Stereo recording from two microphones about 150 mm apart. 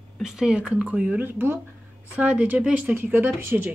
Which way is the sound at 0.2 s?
5° right (ahead or behind).